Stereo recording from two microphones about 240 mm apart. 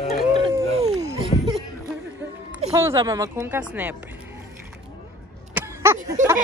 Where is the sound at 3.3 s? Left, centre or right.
Centre.